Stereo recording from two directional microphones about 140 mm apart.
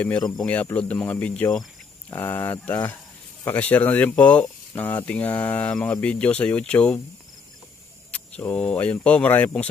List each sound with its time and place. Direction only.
0.4 s speech: 10° left (ahead or behind)
8.1 s speech: 10° left (ahead or behind)